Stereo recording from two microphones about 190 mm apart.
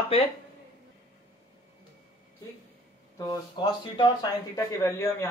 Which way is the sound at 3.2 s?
20° left (ahead or behind).